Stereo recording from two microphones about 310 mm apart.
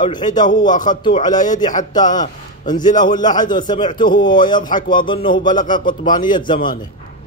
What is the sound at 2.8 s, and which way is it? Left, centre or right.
A man's voice, left.